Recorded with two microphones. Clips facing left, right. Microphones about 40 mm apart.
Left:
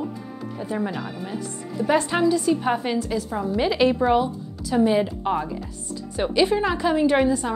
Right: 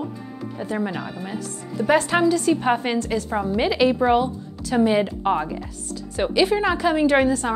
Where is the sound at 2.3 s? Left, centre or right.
Right.